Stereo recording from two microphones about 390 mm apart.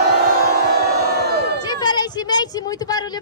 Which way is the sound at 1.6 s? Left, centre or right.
Centre.